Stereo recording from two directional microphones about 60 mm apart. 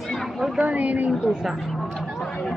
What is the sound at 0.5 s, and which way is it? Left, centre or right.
Speech, right.